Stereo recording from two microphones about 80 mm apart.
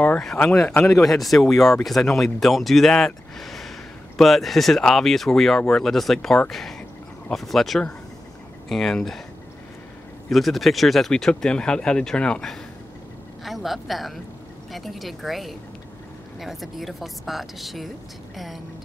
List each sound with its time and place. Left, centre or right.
0.0 s a sound: centre
0.8 s speech: centre
3.3 s a sound: centre
4.2 s speech: centre
10.3 s speech: centre
13.4 s a woman's voice: centre